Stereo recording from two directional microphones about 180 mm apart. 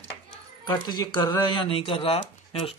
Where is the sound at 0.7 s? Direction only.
20° left (ahead or behind).